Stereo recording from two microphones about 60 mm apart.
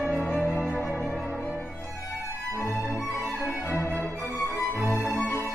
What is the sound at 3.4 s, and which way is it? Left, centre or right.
Music, left.